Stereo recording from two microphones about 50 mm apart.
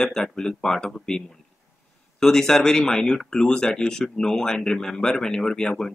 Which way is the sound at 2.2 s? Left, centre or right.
Centre.